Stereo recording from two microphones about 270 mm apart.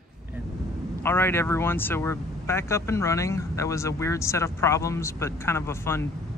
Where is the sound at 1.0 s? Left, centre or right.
Centre.